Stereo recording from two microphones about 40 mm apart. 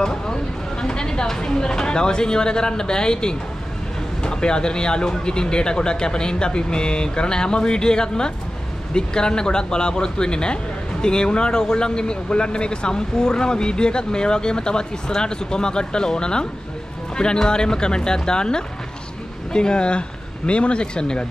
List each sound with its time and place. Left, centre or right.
0.0 s a man's voice: left